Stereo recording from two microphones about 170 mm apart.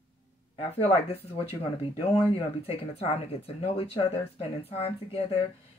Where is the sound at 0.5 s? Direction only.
35° left (ahead or behind).